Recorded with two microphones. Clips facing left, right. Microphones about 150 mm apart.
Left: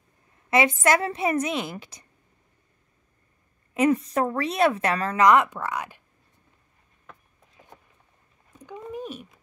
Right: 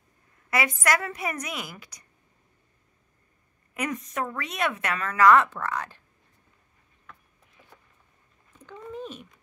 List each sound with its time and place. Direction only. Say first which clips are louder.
0.5 s a woman's voice: left 5 dB; 25° left (ahead or behind)
3.7 s a woman's voice: left 9 dB; 30° left (ahead or behind)
5.2 s speech: even; 15° left (ahead or behind)
7.6 s vehicle: left 5 dB; 30° left (ahead or behind)
8.5 s cat: left 3 dB; 15° left (ahead or behind)